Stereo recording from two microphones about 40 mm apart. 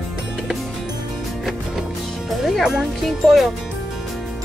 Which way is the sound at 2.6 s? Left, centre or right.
Centre.